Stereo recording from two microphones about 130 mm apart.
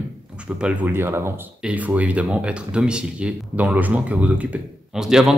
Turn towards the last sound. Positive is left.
turn(degrees=-5)  # may be behind; listen again after turning